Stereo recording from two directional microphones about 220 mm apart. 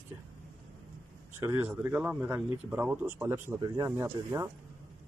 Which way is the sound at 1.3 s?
10° right (ahead or behind).